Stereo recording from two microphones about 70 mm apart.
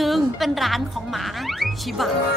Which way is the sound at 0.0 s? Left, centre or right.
Centre.